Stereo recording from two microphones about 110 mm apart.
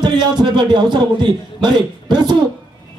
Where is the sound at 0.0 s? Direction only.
40° right (ahead or behind).